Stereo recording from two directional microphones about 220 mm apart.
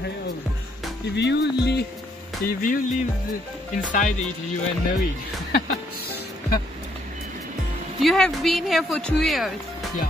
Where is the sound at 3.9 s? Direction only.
35° left (ahead or behind).